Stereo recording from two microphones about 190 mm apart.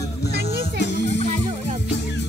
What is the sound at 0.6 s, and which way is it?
Music, 65° left (ahead or behind).